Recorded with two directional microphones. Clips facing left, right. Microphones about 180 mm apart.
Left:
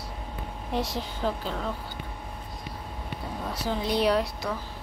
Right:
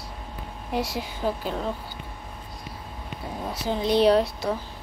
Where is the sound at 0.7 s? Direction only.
5° right (ahead or behind).